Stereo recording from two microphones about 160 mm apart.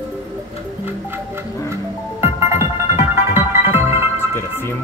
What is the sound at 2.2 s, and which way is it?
Music, 15° right (ahead or behind).